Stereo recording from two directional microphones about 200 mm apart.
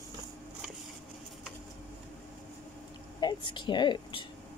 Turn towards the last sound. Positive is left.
turn(degrees=25)  # may be behind; listen again after turning